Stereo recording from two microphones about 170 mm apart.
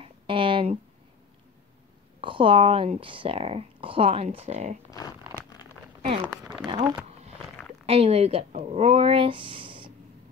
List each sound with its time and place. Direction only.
0.0 s a sound: 30° right (ahead or behind)
2.1 s speech: 30° right (ahead or behind)
6.2 s speech: 5° right (ahead or behind)
6.7 s speech: 25° right (ahead or behind)